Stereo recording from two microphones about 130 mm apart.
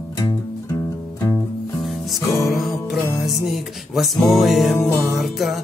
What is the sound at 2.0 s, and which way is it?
Music, centre (ahead or behind).